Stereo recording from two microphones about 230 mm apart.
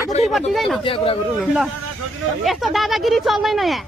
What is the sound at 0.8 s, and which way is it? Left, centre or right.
Speech, left.